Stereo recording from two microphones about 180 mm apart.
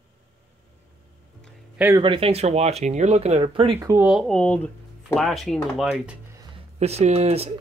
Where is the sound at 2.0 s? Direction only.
30° right (ahead or behind).